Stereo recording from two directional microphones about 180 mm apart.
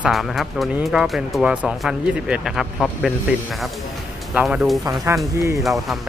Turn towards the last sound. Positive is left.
turn(degrees=0)  # may be behind; listen again after turning